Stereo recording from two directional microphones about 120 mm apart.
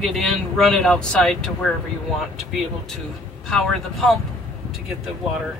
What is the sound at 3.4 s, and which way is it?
Speech, 5° left (ahead or behind).